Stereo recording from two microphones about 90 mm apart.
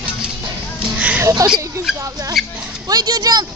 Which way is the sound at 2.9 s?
45° right (ahead or behind).